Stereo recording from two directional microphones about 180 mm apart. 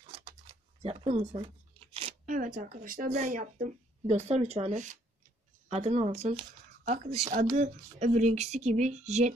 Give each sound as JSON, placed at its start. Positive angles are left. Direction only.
{"t": 0.8, "sound": "speech", "side_deg": -35}
{"t": 2.0, "sound": "a sound", "side_deg": -35}
{"t": 2.3, "sound": "speech", "side_deg": -50}